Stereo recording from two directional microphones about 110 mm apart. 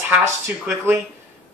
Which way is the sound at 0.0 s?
15° right (ahead or behind).